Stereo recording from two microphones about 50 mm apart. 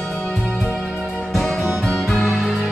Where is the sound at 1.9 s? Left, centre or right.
Centre.